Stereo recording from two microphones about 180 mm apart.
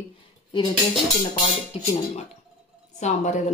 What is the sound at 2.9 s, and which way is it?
Speech, 40° left (ahead or behind).